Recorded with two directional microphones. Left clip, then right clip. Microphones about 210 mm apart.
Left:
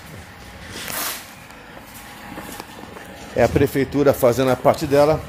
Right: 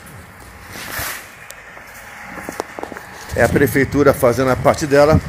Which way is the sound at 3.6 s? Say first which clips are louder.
Right 4 dB; 15° right (ahead or behind).